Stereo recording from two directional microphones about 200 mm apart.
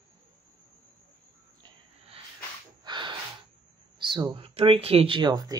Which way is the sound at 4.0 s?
25° right (ahead or behind).